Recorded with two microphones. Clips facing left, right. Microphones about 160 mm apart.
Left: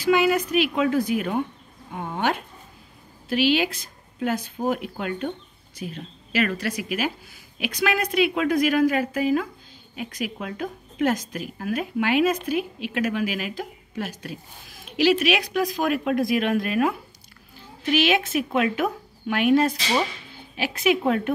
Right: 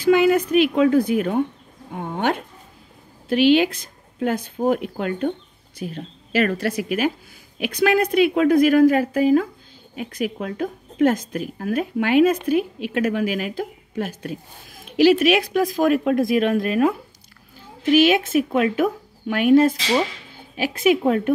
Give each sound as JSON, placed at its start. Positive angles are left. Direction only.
{"t": 0.0, "sound": "speech", "side_deg": -50}
{"t": 17.9, "sound": "speech", "side_deg": -45}